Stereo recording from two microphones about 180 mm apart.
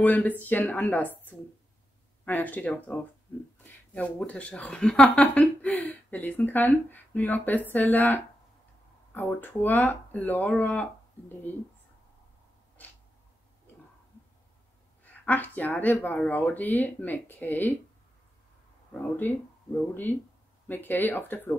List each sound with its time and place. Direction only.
0.0 s speech: 10° left (ahead or behind)
15.2 s speech: 10° left (ahead or behind)
18.9 s speech: 10° left (ahead or behind)